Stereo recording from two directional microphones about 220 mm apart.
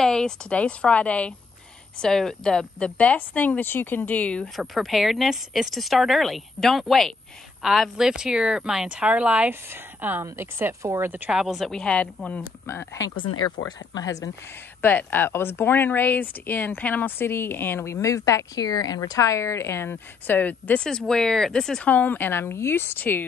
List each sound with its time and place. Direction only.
0.0 s a woman's voice: 5° left (ahead or behind)